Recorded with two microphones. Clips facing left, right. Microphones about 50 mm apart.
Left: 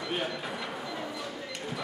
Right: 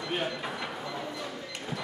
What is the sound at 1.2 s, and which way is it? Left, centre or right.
Cash register, centre.